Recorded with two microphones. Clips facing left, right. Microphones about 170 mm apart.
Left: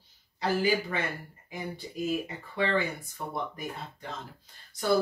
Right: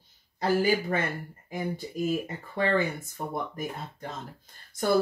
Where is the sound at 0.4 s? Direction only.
50° right (ahead or behind).